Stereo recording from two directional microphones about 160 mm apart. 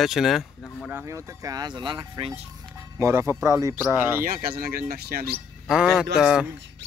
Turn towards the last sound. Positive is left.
turn(degrees=-5)  # may be behind; listen again after turning